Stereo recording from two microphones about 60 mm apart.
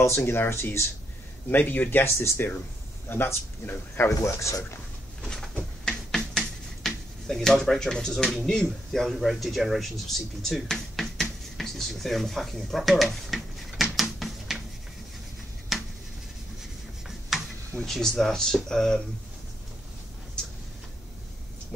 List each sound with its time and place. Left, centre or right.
0.0 s speech: left
1.5 s a man's voice: left
5.9 s finger snapping: centre
8.5 s speech: centre
13.9 s typewriter: centre
15.7 s writing: centre
17.3 s a sound: centre
17.8 s speech: centre